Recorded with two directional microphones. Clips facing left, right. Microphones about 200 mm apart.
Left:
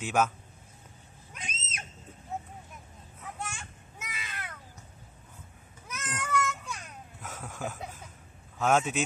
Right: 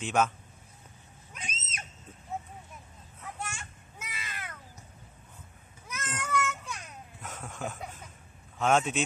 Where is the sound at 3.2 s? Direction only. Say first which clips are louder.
Even; centre (ahead or behind).